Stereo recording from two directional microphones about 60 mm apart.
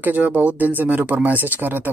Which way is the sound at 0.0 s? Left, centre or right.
Right.